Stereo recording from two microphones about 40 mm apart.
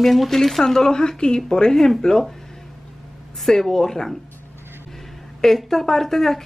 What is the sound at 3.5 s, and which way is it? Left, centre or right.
Speech, centre.